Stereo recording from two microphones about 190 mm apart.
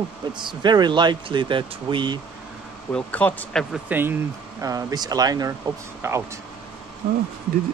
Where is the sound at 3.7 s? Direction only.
10° right (ahead or behind).